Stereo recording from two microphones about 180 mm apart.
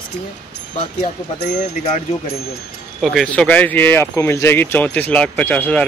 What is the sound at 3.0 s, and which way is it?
Speech, centre (ahead or behind).